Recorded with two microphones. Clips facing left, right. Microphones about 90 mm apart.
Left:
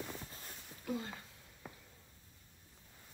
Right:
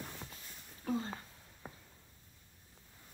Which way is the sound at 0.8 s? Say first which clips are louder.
Right 4 dB; 40° right (ahead or behind).